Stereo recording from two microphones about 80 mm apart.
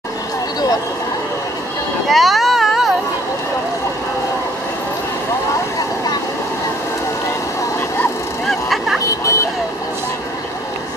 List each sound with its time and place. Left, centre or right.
2.0 s a sound: centre
8.5 s vehicle: centre
9.2 s vehicle: left